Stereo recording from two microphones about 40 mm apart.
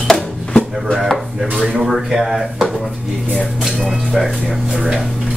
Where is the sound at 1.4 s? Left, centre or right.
Centre.